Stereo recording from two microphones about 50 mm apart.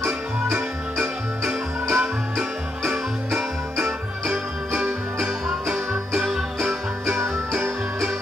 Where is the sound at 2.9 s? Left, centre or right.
Centre.